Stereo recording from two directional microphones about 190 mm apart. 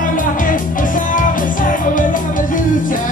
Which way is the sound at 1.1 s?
45° left (ahead or behind).